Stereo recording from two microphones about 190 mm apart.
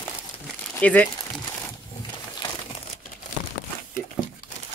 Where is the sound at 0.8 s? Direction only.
5° left (ahead or behind).